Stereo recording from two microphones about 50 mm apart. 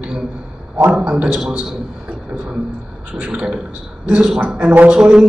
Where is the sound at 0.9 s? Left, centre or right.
Right.